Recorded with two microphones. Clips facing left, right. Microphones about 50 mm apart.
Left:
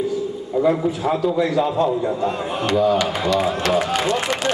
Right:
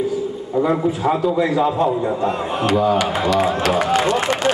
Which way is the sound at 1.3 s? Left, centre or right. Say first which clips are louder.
Right 1 dB; right.